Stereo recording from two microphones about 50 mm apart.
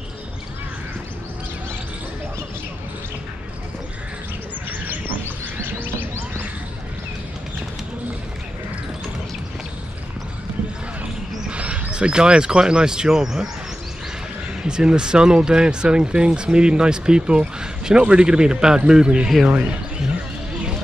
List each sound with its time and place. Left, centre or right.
11.4 s speech: right
14.7 s speech: centre